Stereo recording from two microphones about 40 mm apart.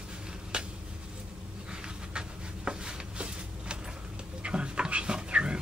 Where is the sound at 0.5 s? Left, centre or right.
Right.